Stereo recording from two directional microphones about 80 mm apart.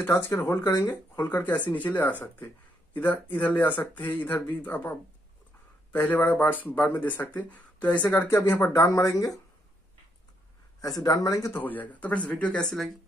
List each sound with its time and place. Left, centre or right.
0.0 s speech: left
1.2 s speech: left
8.3 s speech: left
10.8 s speech: left
11.5 s speech: left; by 12.9 s centre